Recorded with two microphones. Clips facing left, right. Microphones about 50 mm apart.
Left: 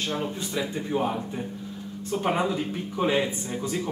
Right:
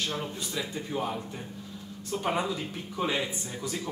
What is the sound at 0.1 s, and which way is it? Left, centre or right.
Speech, left.